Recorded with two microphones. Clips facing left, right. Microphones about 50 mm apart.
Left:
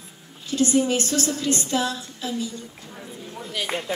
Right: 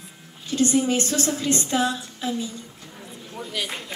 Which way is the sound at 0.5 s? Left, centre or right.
Right.